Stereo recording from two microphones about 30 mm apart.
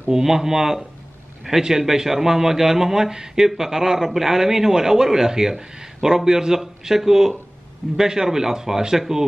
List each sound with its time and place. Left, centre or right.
0.2 s a man's voice: centre
8.0 s a man's voice: centre